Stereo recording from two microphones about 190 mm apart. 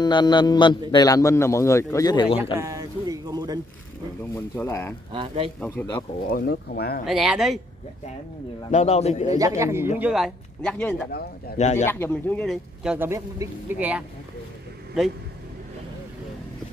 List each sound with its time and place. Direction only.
0.0 s a man's voice: 25° left (ahead or behind)
2.6 s speech: 20° right (ahead or behind)
4.4 s speech: 15° left (ahead or behind)
5.1 s speech: 30° right (ahead or behind)
5.6 s speech: 10° left (ahead or behind)
6.3 s speech: 55° left (ahead or behind)
7.1 s speech: centre (ahead or behind)
8.6 s a man's voice: 35° left (ahead or behind)
9.4 s a man's voice: 15° right (ahead or behind); by 11.1 s 5° left (ahead or behind)
11.1 s speech: 55° left (ahead or behind)
11.5 s a man's voice: 40° left (ahead or behind)
11.9 s speech: 10° left (ahead or behind)
12.8 s a man's voice: 10° right (ahead or behind)